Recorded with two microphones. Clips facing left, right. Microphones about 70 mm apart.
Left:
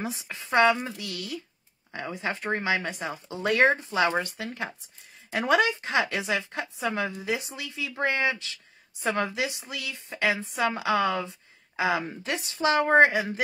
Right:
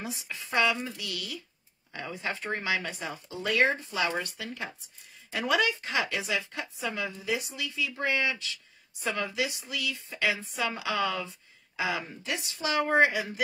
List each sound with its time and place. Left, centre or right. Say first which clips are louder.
0.0 s a woman's voice: left 4 dB; left
5.3 s a woman's voice: left 4 dB; left